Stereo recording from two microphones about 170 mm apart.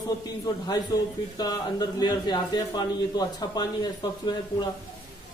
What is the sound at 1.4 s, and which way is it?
A man's voice, 25° left (ahead or behind).